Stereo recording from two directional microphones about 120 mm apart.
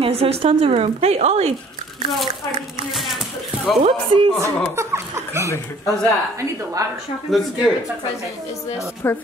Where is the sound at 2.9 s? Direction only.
Centre (ahead or behind).